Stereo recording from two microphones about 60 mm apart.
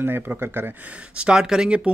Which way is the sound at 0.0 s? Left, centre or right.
Right.